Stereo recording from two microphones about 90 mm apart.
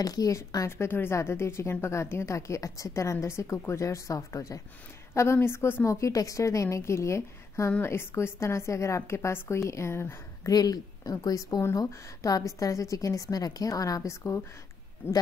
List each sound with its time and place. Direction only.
0.0 s a woman's voice: 45° left (ahead or behind)
0.7 s speech: 25° left (ahead or behind)
10.5 s a woman's voice: 45° left (ahead or behind)